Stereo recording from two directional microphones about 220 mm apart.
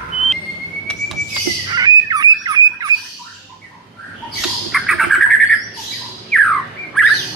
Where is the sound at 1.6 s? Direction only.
15° right (ahead or behind).